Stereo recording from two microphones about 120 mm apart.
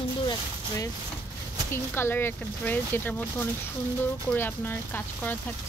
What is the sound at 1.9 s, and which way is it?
Speech, 20° left (ahead or behind).